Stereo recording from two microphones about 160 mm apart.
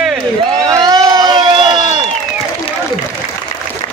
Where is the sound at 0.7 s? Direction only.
25° right (ahead or behind).